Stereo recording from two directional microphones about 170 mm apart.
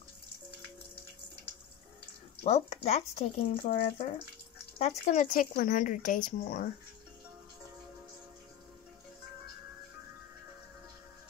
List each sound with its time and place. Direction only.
2.4 s speech: 40° left (ahead or behind)
5.0 s speech: 50° left (ahead or behind)